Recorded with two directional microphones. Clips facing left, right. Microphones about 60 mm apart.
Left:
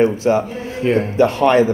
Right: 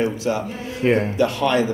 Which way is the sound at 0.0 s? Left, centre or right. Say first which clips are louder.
Left 7 dB; left.